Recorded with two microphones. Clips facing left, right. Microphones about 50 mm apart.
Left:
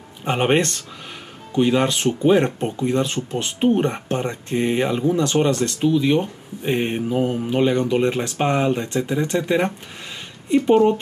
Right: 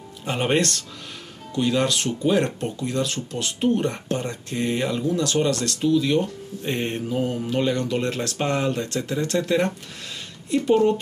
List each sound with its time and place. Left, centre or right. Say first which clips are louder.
0.2 s speech: left 4 dB; left